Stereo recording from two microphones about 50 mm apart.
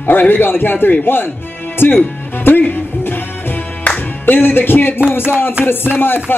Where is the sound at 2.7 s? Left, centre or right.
Left.